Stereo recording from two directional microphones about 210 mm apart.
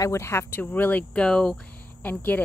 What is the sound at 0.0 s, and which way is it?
Speech, 15° left (ahead or behind).